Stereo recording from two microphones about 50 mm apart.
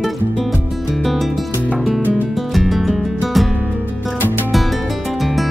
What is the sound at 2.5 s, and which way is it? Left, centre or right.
Music, centre.